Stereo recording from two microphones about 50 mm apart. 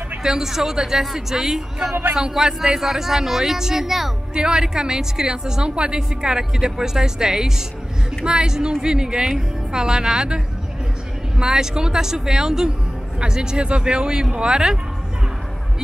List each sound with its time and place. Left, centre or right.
0.2 s a woman's voice: centre
4.3 s a woman's voice: centre